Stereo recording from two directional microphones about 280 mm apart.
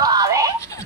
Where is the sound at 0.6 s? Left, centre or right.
Centre.